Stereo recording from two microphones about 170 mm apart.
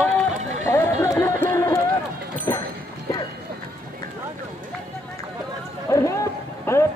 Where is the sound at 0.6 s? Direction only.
15° left (ahead or behind).